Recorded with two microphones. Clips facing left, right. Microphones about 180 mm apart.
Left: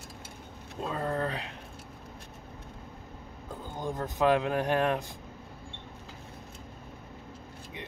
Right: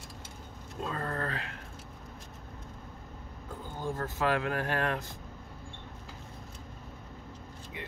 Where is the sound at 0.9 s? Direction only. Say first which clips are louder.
Left 5 dB; 15° left (ahead or behind).